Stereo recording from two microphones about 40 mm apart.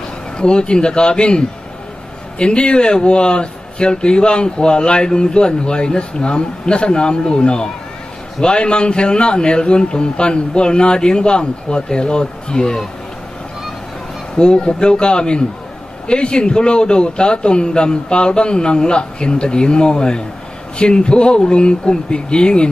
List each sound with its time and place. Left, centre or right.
0.4 s speech: left
14.4 s speech: left